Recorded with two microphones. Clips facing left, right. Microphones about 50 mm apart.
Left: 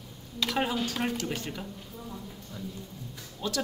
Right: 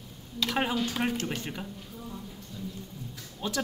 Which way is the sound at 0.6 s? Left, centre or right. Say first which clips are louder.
Right 1 dB; centre.